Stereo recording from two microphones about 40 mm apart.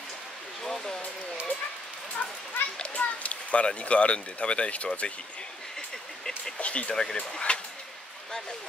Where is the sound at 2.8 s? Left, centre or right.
Left.